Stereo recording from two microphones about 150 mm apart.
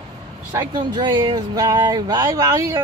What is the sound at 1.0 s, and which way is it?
Speech, 30° right (ahead or behind).